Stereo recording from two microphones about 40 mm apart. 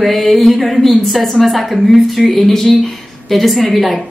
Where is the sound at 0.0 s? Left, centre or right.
Centre.